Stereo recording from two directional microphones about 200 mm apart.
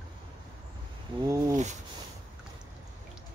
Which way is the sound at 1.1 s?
25° right (ahead or behind).